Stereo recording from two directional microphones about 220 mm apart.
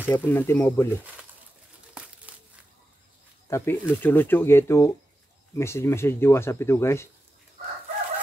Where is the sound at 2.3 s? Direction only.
5° right (ahead or behind).